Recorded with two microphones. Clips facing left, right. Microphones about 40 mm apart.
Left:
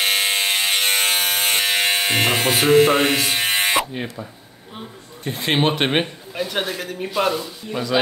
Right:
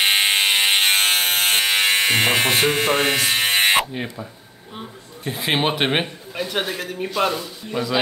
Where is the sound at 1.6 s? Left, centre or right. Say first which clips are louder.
Right 1 dB; centre.